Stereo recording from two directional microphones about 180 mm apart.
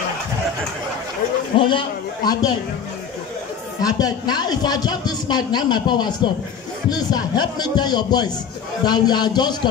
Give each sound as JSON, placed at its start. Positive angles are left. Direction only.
{"t": 1.6, "sound": "speech", "side_deg": 25}
{"t": 3.8, "sound": "speech", "side_deg": 20}